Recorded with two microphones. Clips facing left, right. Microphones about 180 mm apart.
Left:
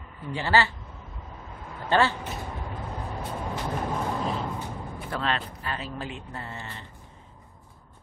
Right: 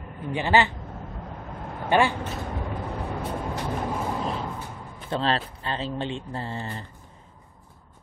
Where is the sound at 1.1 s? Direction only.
65° right (ahead or behind).